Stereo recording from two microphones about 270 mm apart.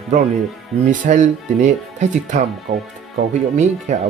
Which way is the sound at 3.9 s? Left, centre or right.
Right.